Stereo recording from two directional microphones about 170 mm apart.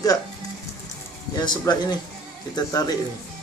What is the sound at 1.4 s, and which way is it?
Speech, 25° left (ahead or behind).